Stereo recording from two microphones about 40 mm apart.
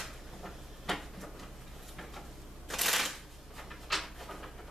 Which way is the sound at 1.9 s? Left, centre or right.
Centre.